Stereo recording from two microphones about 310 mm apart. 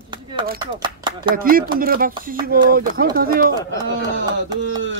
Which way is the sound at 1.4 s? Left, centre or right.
Right.